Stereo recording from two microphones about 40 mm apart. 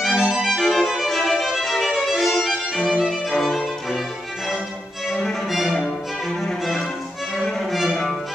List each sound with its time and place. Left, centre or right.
0.0 s music: centre
1.0 s violin: centre
5.5 s violin: centre
6.4 s music: centre
7.7 s violin: centre